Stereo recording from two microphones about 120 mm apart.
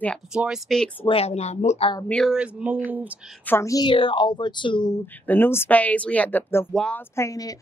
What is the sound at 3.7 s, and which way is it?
Speech, 35° left (ahead or behind).